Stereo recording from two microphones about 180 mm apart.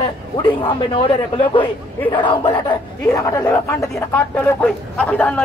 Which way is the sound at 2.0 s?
25° left (ahead or behind).